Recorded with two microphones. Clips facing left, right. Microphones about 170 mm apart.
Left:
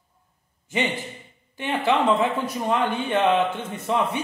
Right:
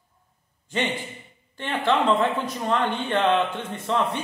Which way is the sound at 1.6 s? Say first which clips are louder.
Left 1 dB; 5° left (ahead or behind).